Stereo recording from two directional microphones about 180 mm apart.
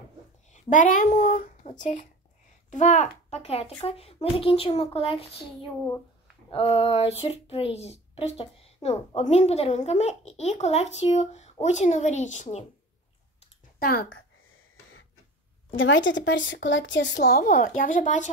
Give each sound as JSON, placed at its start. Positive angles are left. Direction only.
{"t": 0.5, "sound": "a child's voice", "side_deg": 45}
{"t": 13.7, "sound": "speech", "side_deg": 60}
{"t": 15.8, "sound": "speech", "side_deg": 90}